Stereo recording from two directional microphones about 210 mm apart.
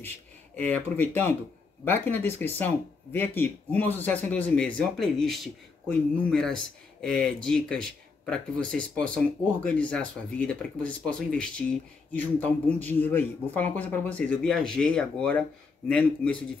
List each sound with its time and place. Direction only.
0.6 s a man's voice: 10° left (ahead or behind)